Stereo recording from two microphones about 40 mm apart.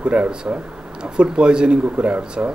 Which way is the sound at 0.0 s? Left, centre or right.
Right.